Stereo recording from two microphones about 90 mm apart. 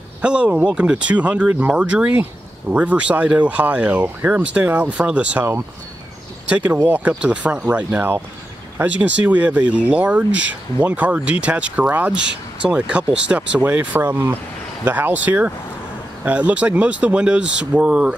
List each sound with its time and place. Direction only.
0.2 s speech: 10° right (ahead or behind)
6.5 s speech: 15° right (ahead or behind)